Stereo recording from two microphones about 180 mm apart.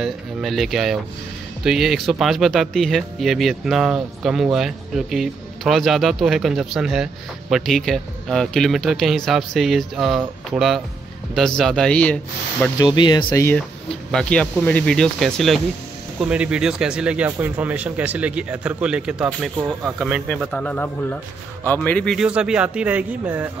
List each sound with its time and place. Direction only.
0.0 s speech: centre (ahead or behind)
12.7 s speech: 25° left (ahead or behind)
14.1 s speech: 5° left (ahead or behind)